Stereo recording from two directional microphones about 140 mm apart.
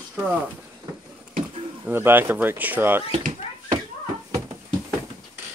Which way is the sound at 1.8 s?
15° right (ahead or behind).